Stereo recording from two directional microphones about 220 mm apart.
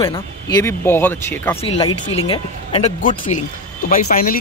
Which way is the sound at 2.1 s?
25° left (ahead or behind).